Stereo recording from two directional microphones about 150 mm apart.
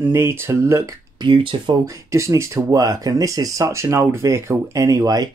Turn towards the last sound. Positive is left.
turn(degrees=-25)  # may be behind; listen again after turning